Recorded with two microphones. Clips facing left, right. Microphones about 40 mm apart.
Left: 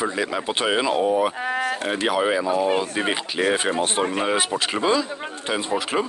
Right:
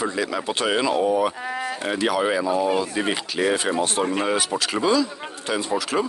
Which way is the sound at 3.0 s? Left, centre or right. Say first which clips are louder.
Even; left.